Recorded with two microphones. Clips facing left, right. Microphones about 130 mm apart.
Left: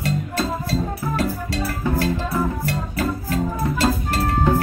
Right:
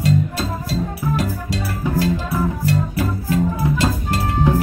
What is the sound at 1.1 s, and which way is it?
Music, 15° right (ahead or behind).